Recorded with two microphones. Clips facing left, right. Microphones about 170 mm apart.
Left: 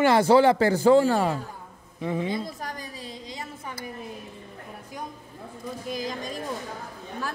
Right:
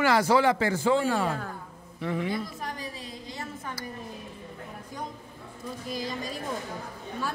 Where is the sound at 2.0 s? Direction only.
20° left (ahead or behind).